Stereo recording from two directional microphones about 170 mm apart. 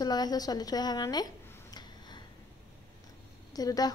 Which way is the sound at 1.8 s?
25° left (ahead or behind).